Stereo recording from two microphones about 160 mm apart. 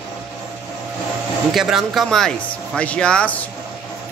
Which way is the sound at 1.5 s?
Centre (ahead or behind).